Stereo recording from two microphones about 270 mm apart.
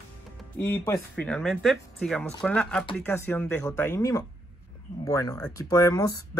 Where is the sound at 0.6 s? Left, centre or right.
Centre.